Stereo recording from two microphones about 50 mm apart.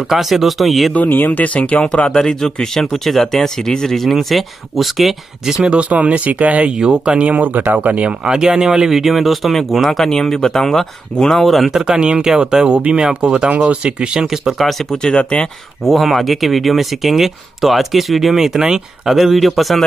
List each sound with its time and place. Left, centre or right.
0.1 s speech: centre
0.9 s speech: left
1.9 s speech: centre
5.5 s speech: centre
8.3 s speech: centre
11.7 s speech: centre
13.5 s speech: right
13.8 s speech: centre
15.0 s speech: left
15.8 s speech: centre